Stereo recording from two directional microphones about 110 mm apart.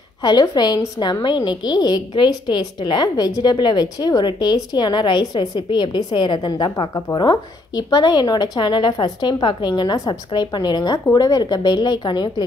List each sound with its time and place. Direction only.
0.2 s a woman's voice: 40° left (ahead or behind)